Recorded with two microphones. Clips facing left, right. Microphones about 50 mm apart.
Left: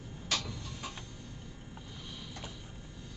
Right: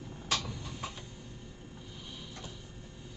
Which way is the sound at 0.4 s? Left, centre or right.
Right.